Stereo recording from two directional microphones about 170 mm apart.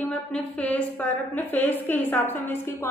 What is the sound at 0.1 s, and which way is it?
A woman's voice, 5° left (ahead or behind).